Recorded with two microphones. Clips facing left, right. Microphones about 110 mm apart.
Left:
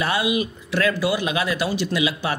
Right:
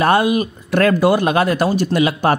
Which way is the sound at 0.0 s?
50° right (ahead or behind).